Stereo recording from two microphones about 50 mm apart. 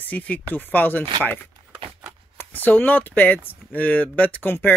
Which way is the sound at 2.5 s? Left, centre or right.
Left.